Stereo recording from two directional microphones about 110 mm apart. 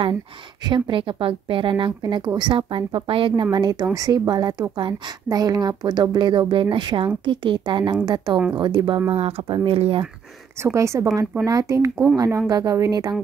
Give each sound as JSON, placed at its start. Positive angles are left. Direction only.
{"t": 0.7, "sound": "a woman's voice", "side_deg": -50}
{"t": 3.5, "sound": "a woman's voice", "side_deg": -40}
{"t": 10.6, "sound": "a woman's voice", "side_deg": -25}